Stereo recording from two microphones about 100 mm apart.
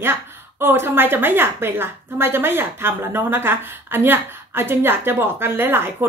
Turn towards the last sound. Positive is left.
turn(degrees=-25)  # may be behind; listen again after turning